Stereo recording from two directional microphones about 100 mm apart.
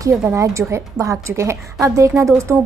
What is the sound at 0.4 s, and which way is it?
A woman's voice, 30° right (ahead or behind).